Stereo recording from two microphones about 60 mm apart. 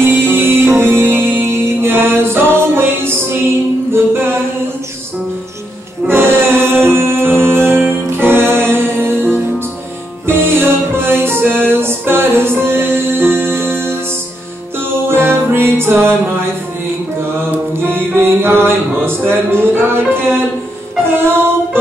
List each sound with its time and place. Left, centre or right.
0.0 s music: right
6.0 s music: right
15.0 s music: right
17.7 s music: right